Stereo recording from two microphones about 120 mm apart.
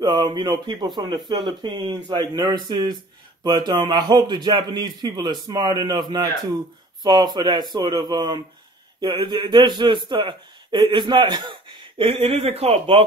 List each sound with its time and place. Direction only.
0.0 s a man's voice: 35° right (ahead or behind)
12.0 s speech: 55° right (ahead or behind)